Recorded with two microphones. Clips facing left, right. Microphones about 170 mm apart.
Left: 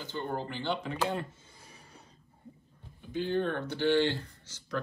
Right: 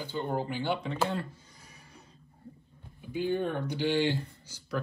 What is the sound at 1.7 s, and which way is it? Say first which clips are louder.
Printer: left 2 dB; 30° left (ahead or behind).